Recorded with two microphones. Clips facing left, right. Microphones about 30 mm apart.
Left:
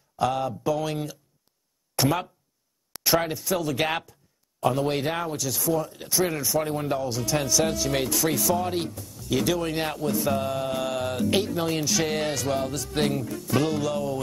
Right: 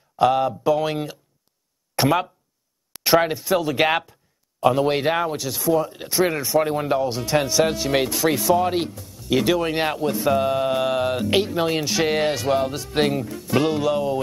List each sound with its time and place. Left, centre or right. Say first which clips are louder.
0.2 s speech: right 7 dB; right
3.2 s speech: right 9 dB; right
3.5 s a sound: right 6 dB; right
4.6 s speech: right 6 dB; centre
4.9 s speech: right 6 dB; right
6.6 s speech: right 6 dB; centre
7.0 s speech: right 5 dB; right